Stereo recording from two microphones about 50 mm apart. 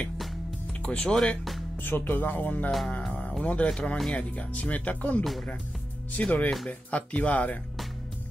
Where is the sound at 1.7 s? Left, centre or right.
Left.